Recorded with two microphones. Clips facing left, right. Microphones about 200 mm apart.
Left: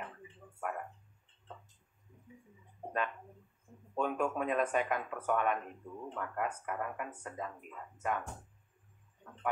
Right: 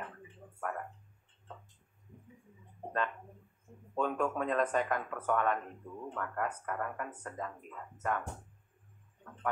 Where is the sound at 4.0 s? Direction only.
10° left (ahead or behind).